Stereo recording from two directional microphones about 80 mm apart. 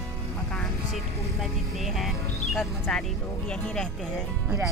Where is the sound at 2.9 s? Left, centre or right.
Centre.